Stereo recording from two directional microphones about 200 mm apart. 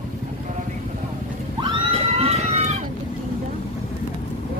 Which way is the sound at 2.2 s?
30° right (ahead or behind).